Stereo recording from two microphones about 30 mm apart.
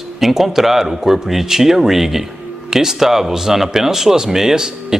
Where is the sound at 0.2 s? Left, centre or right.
Centre.